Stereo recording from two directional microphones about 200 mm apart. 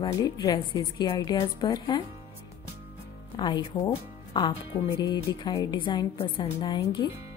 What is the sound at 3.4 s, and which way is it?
A woman's voice, 20° left (ahead or behind).